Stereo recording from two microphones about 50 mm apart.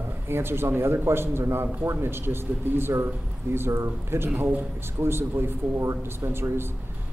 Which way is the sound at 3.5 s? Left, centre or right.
Right.